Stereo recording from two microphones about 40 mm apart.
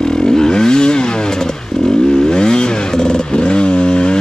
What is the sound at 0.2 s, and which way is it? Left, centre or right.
Vehicle, centre.